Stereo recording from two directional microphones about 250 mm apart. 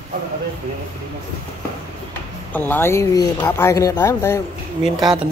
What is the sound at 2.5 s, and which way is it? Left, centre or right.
Speech, centre.